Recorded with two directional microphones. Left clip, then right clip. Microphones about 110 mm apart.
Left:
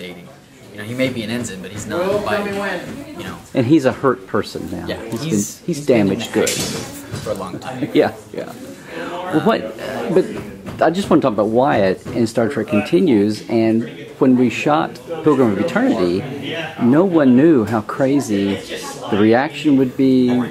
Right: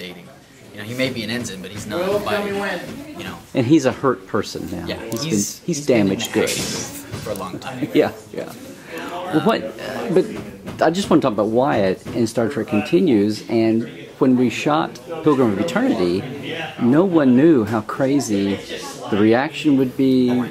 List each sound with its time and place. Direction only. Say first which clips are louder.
0.9 s speech: left 2 dB; centre (ahead or behind)
3.5 s speech: left 2 dB; 20° right (ahead or behind)
5.2 s speech: even; centre (ahead or behind)
5.7 s speech: left 2 dB; 20° right (ahead or behind)
7.2 s speech: left 3 dB; 5° right (ahead or behind)
7.9 s speech: left 2 dB; 20° right (ahead or behind)
8.9 s a sound: left 2 dB; 25° right (ahead or behind)
9.5 s speech: left 2 dB; 25° right (ahead or behind)